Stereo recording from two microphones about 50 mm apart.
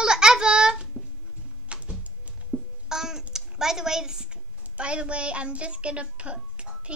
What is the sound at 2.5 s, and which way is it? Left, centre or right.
Babbling, left.